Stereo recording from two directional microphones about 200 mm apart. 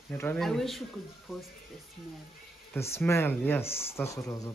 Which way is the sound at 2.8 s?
15° left (ahead or behind).